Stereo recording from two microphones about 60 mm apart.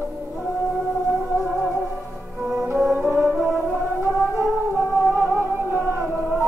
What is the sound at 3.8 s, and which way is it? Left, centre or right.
Music, right.